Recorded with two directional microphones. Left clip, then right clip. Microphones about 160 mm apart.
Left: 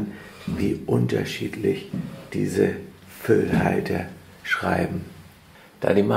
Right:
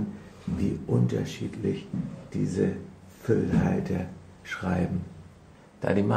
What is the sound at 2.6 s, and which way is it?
Speech, 15° left (ahead or behind).